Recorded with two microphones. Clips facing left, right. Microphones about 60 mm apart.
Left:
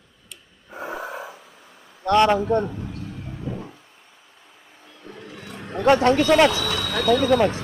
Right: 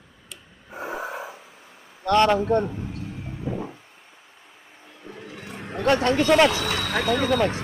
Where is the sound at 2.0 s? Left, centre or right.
Centre.